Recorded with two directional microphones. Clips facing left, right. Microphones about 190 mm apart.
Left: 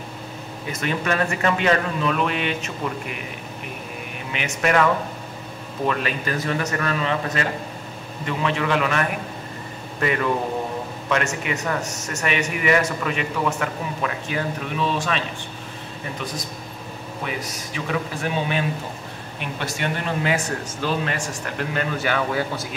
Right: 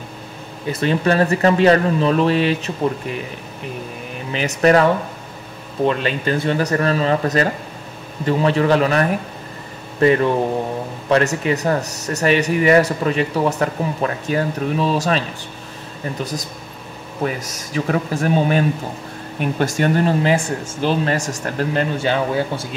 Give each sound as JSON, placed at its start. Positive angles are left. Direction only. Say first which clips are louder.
{"t": 0.7, "sound": "speech", "louder": "right 7 dB", "side_deg": -35}
{"t": 4.3, "sound": "speech", "louder": "right 7 dB", "side_deg": -35}
{"t": 17.7, "sound": "speech", "louder": "right 7 dB", "side_deg": -40}